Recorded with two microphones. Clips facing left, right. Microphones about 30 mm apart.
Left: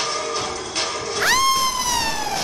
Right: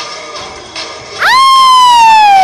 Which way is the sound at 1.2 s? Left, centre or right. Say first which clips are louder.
Right 14 dB; right.